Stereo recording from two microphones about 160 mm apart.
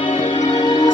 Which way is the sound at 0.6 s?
30° left (ahead or behind).